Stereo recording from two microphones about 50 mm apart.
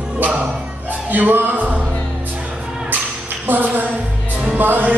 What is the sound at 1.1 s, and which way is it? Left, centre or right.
Music, right.